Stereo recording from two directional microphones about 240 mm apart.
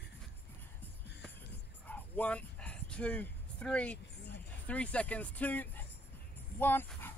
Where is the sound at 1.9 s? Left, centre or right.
Centre.